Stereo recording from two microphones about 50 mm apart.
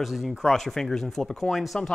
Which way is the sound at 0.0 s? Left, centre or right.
Centre.